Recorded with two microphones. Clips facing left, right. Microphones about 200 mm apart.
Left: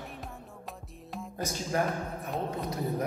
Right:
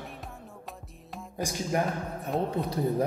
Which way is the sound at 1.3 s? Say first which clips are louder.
Right 3 dB; 10° right (ahead or behind).